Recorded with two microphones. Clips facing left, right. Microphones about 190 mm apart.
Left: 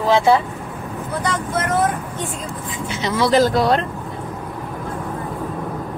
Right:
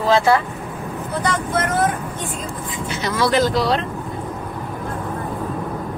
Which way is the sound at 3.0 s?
20° left (ahead or behind).